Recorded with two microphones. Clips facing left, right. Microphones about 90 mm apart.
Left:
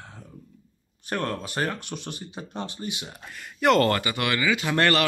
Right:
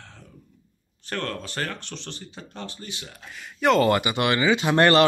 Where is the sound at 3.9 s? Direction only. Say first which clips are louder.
Right 4 dB; 20° right (ahead or behind).